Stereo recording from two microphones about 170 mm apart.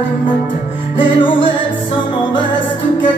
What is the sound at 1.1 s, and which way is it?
Music, 30° left (ahead or behind).